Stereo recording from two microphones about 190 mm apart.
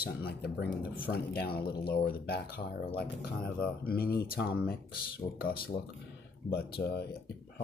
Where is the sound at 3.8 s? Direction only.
50° left (ahead or behind).